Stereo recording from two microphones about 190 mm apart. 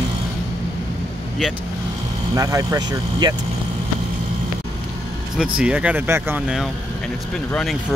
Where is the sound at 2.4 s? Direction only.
15° right (ahead or behind).